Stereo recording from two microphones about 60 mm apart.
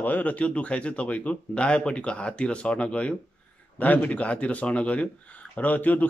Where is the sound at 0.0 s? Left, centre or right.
Left.